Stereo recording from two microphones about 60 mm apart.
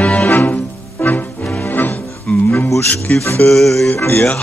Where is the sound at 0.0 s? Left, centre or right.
Left.